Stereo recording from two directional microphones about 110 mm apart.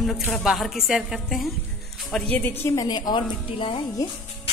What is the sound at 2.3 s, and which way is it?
Speech, 20° left (ahead or behind).